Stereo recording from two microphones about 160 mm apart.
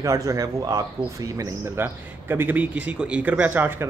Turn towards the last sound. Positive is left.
turn(degrees=-15)  # may be behind; listen again after turning